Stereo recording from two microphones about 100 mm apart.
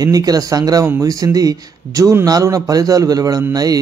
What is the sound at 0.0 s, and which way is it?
A man's voice, 40° right (ahead or behind).